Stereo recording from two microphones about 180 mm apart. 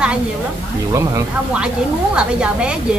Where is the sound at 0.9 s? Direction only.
20° right (ahead or behind).